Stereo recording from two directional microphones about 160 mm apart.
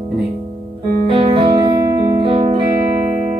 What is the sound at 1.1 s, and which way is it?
Music, 35° right (ahead or behind).